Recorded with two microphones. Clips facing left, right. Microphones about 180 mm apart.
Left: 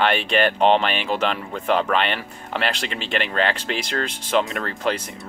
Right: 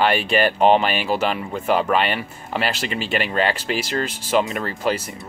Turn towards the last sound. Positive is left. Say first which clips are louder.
# right 2 dB
turn(degrees=-5)  # may be behind; listen again after turning